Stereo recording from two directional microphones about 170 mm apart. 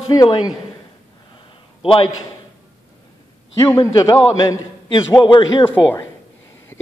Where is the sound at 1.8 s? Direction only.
30° left (ahead or behind).